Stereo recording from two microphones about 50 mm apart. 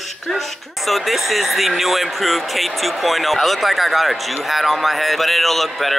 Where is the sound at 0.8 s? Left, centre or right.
Centre.